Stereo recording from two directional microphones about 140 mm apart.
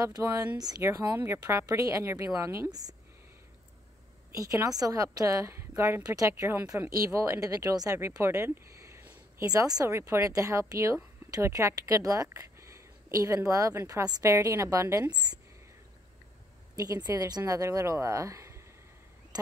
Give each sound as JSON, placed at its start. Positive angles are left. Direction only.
{"t": 0.0, "sound": "a woman's voice", "side_deg": -25}
{"t": 4.3, "sound": "a woman's voice", "side_deg": -25}
{"t": 16.7, "sound": "a woman's voice", "side_deg": -25}